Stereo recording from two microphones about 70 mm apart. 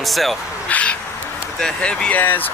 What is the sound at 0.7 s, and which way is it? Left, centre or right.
Crow, centre.